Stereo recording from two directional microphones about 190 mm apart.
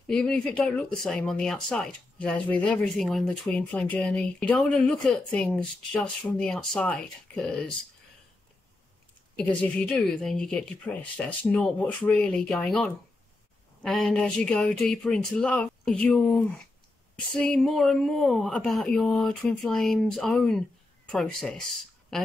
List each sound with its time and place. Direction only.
0.0 s speech: 5° left (ahead or behind)
9.4 s speech: 5° left (ahead or behind)